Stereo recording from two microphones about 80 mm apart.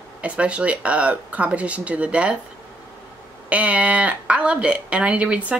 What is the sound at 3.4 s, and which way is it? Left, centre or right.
A woman's voice, centre.